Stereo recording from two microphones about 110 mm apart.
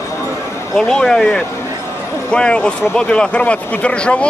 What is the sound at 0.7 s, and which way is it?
Speech, 5° left (ahead or behind).